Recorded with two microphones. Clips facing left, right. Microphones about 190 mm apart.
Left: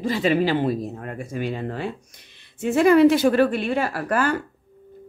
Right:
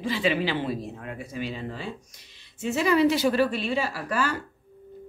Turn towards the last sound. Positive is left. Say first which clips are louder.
# left 5 dB
turn(degrees=55)  # may be behind; listen again after turning